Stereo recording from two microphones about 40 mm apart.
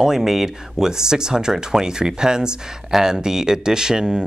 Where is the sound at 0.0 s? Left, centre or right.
Centre.